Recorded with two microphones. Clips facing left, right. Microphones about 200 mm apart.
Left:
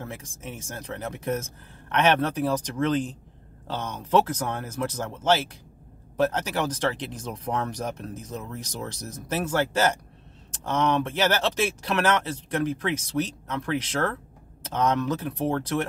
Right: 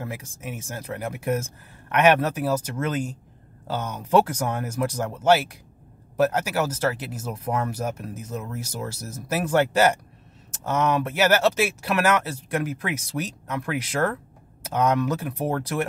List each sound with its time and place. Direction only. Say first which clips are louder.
0.4 s speech: right 3 dB; 10° right (ahead or behind)